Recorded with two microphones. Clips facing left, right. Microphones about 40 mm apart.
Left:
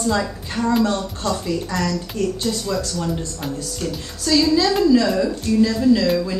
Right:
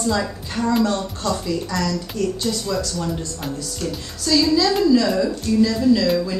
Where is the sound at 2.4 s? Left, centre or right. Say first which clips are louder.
Even; centre.